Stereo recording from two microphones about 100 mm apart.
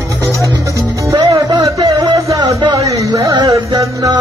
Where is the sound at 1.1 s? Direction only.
40° right (ahead or behind).